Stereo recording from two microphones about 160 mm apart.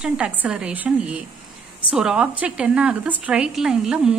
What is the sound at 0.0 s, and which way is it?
A woman's voice, 5° right (ahead or behind).